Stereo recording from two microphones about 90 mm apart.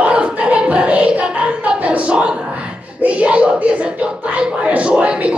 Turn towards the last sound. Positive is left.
turn(degrees=-15)  # may be behind; listen again after turning